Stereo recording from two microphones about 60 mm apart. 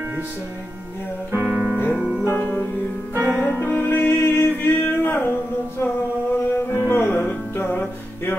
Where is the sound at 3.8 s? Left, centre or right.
Left.